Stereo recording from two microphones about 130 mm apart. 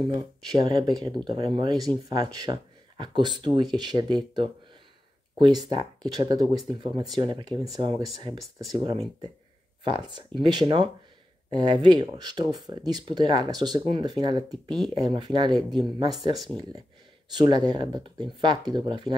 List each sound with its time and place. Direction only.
0.1 s speech: 30° right (ahead or behind)
5.7 s speech: 35° right (ahead or behind)
14.5 s speech: centre (ahead or behind)
15.0 s speech: 35° right (ahead or behind)
16.1 s speech: centre (ahead or behind)
17.3 s speech: 35° right (ahead or behind)